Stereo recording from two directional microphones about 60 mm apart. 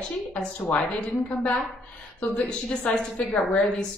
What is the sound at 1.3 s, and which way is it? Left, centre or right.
A woman's voice, left.